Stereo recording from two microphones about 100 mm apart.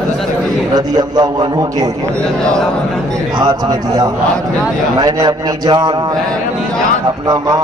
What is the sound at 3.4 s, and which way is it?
A man's voice, 45° right (ahead or behind).